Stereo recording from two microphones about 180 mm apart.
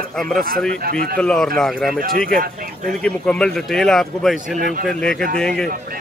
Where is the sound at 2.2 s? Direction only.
55° right (ahead or behind).